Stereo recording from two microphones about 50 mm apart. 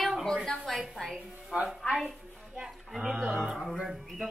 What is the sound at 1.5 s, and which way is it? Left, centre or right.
Music, right.